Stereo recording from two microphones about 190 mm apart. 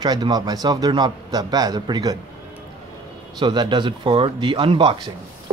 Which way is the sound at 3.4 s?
25° right (ahead or behind).